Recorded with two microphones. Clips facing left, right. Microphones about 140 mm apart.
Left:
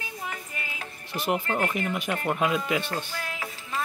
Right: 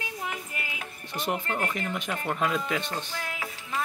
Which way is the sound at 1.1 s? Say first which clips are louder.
Left 3 dB; 10° left (ahead or behind).